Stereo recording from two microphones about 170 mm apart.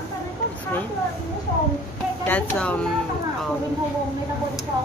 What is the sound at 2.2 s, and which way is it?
Speech, 10° left (ahead or behind).